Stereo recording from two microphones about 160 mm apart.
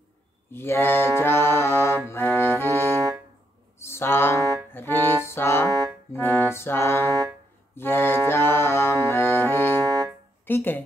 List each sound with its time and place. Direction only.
0.5 s music: 15° left (ahead or behind)
3.8 s mantra: 15° left (ahead or behind)
4.7 s music: 15° left (ahead or behind)